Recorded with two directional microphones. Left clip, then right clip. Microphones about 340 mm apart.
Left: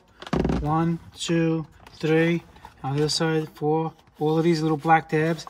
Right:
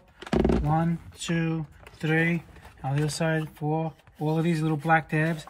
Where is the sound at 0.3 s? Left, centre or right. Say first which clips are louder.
Right 1 dB; centre.